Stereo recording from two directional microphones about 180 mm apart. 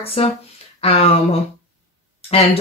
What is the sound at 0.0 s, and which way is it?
Speech, 35° left (ahead or behind).